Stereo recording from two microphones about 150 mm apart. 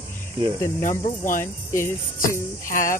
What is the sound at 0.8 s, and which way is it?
Speech, 60° left (ahead or behind).